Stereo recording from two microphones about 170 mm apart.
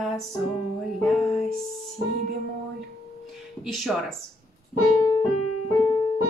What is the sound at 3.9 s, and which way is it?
Speech, 5° right (ahead or behind).